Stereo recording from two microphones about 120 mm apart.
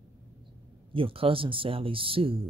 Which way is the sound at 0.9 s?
50° right (ahead or behind).